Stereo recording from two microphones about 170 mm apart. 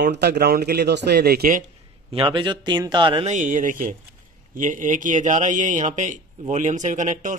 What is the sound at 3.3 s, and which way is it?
Speech, 45° right (ahead or behind).